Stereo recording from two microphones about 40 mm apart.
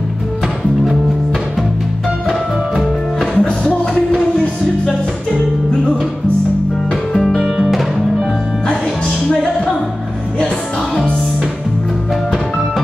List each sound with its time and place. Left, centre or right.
3.3 s music: centre
7.2 s music: centre